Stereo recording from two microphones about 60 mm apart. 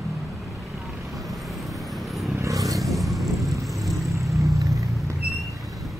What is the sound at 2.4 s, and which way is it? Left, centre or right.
Vehicle, right.